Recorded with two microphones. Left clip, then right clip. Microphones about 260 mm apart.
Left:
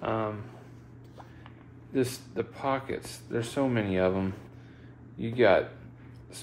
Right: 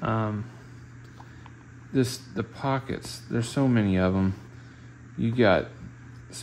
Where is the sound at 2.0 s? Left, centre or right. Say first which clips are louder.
Right 2 dB; right.